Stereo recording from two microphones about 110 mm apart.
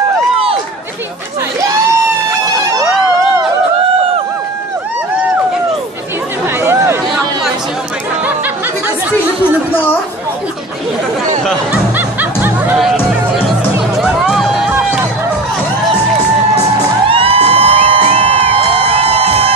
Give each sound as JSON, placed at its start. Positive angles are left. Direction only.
{"t": 6.6, "sound": "chatter", "side_deg": -25}
{"t": 11.7, "sound": "music", "side_deg": -15}
{"t": 12.7, "sound": "music", "side_deg": -5}
{"t": 14.7, "sound": "run", "side_deg": -20}
{"t": 17.1, "sound": "music", "side_deg": -60}
{"t": 18.8, "sound": "a sound", "side_deg": -60}